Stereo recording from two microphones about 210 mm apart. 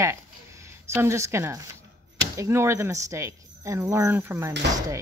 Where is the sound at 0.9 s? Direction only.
15° right (ahead or behind).